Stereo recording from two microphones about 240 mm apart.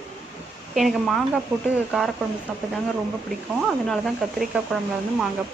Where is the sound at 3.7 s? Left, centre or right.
Centre.